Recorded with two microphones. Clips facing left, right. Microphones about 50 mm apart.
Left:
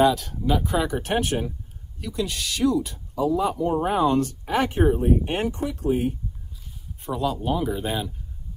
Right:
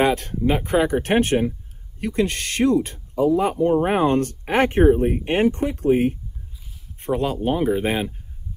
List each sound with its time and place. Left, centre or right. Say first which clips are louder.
0.0 s speech: right 1 dB; right